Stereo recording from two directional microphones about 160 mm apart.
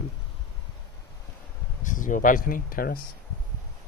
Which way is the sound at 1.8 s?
55° left (ahead or behind).